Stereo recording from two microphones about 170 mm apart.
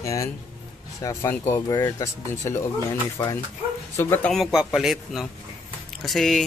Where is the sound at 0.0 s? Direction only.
20° left (ahead or behind).